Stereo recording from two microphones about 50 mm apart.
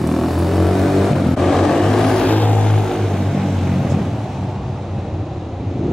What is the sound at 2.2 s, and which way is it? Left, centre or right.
Vehicle, left.